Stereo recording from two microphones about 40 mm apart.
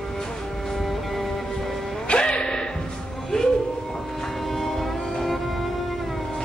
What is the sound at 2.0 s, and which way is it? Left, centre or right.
Music, left.